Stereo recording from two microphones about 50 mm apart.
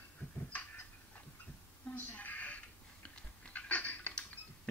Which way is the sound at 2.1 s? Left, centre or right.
Left.